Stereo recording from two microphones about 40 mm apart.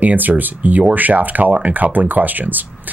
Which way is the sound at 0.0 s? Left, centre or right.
Right.